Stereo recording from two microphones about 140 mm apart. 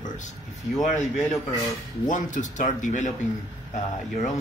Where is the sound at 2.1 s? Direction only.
65° left (ahead or behind).